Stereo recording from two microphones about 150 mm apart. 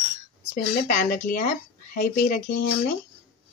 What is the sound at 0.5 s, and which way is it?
Speech, 65° left (ahead or behind).